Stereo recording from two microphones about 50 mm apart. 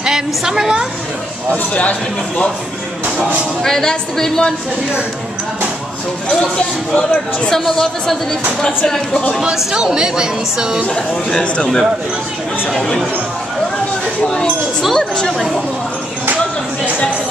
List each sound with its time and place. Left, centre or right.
0.0 s a woman's voice: centre
1.5 s a man's voice: left
3.6 s speech: centre
6.5 s speech: centre
9.7 s a woman's voice: centre
11.0 s speech: centre
14.2 s speech: centre
14.8 s speech: centre